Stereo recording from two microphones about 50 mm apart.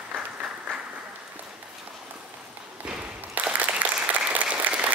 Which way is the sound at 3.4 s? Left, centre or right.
Right.